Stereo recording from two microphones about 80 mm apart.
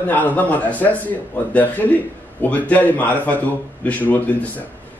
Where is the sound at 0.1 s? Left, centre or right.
Left.